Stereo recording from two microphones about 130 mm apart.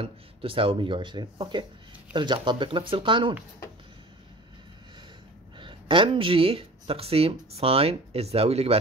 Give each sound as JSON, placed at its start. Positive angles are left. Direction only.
{"t": 0.0, "sound": "speech", "side_deg": -45}
{"t": 5.6, "sound": "speech", "side_deg": -40}